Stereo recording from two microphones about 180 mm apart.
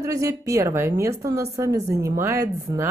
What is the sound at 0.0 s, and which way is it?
A woman's voice, 15° right (ahead or behind).